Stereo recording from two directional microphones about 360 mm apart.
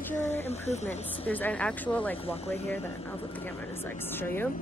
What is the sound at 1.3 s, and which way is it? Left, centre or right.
Speech, centre.